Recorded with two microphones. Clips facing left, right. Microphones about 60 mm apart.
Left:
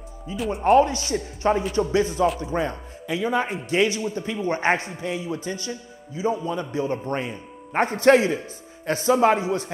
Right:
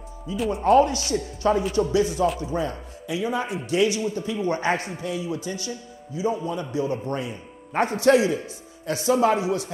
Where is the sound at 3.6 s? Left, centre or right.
Left.